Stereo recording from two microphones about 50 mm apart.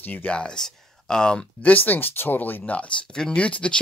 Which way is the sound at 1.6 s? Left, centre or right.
Left.